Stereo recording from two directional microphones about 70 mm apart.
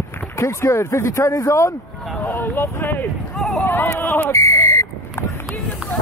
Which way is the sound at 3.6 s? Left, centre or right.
Left.